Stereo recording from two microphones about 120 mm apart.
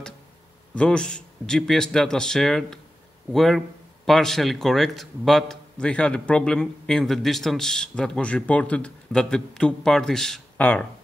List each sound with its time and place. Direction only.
0.7 s speech: 5° left (ahead or behind)